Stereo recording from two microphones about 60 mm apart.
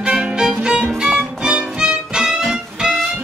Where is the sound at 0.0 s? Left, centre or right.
Centre.